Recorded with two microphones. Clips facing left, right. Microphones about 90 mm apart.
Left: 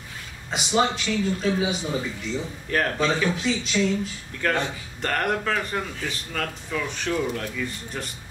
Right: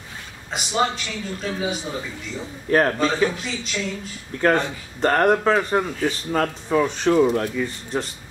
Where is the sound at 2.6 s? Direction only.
35° right (ahead or behind).